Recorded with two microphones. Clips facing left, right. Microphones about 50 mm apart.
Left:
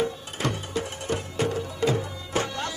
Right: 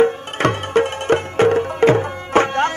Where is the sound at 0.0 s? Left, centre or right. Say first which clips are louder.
Right 12 dB; right.